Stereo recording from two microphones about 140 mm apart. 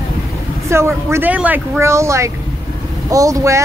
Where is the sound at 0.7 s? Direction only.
20° right (ahead or behind).